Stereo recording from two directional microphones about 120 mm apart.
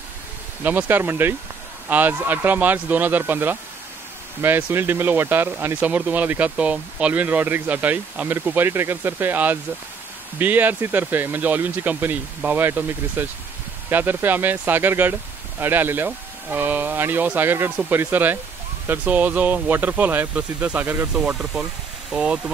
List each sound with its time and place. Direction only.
0.7 s speech: 15° right (ahead or behind)